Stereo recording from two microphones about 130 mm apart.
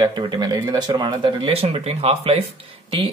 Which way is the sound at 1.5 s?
50° right (ahead or behind).